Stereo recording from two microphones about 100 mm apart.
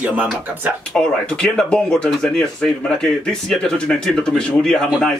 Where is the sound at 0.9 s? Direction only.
10° left (ahead or behind).